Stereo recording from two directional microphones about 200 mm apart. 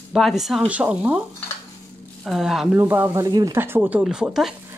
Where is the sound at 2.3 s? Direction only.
Centre (ahead or behind).